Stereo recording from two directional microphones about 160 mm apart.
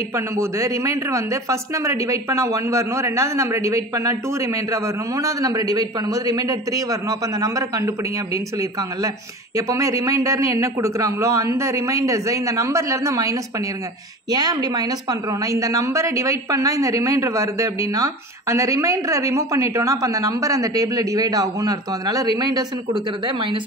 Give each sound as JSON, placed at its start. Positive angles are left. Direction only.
{"t": 0.1, "sound": "speech", "side_deg": -20}